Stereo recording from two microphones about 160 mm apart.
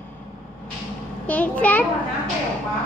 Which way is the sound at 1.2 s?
10° left (ahead or behind).